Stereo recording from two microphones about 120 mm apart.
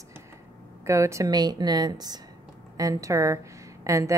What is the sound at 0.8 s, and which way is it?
A woman's voice, 25° right (ahead or behind).